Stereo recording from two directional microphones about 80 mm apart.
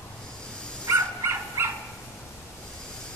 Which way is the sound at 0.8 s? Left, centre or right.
Right.